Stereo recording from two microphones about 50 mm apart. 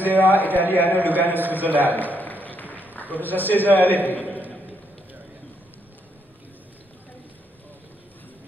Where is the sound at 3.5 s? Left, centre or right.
Left.